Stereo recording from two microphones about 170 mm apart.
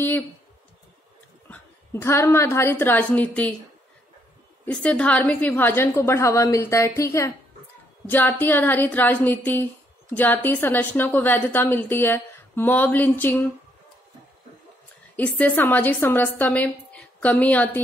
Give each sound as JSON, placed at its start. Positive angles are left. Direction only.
{"t": 1.5, "sound": "a woman's voice", "side_deg": 15}
{"t": 4.6, "sound": "a woman's voice", "side_deg": 5}
{"t": 15.1, "sound": "a woman's voice", "side_deg": 10}